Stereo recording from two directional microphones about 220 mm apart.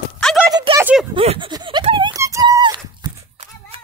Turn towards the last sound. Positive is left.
turn(degrees=-20)  # may be behind; listen again after turning